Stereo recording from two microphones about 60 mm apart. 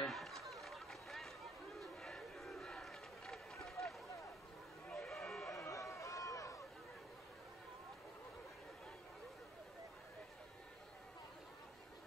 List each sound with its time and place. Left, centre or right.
0.0 s run: centre
4.9 s a sound: centre
5.7 s run: left